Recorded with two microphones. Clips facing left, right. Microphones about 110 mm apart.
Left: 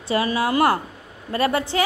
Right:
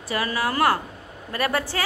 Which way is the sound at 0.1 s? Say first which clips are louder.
Left 4 dB; 25° left (ahead or behind).